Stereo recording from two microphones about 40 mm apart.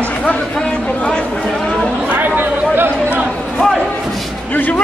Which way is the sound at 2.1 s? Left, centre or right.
Right.